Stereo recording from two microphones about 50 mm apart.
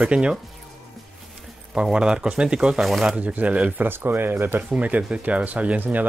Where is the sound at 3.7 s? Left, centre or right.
Right.